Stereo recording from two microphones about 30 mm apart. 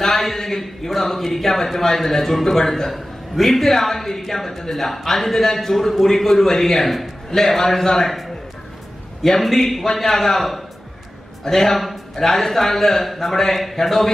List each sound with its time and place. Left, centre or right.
0.1 s a man's voice: centre
2.7 s a man's voice: centre